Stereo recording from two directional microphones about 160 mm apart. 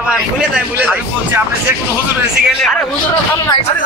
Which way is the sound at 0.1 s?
5° right (ahead or behind).